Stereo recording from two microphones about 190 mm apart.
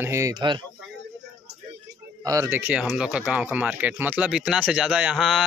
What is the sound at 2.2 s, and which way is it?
Speech, 15° right (ahead or behind).